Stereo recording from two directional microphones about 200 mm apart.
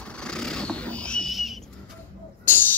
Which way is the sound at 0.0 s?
5° left (ahead or behind).